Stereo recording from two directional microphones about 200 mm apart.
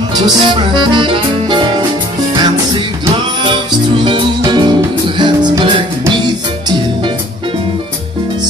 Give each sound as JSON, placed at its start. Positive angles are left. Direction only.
{"t": 0.1, "sound": "music", "side_deg": -25}